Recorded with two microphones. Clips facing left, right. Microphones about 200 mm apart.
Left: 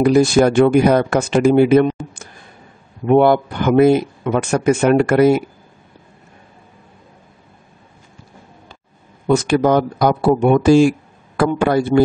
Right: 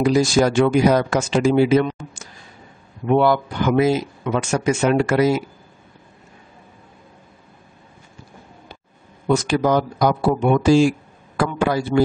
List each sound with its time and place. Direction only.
0.0 s speech: 60° left (ahead or behind)
9.3 s speech: 55° left (ahead or behind)